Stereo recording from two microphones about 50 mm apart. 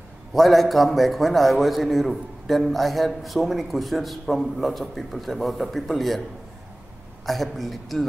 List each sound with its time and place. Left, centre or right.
0.3 s a man's voice: centre
7.2 s a man's voice: centre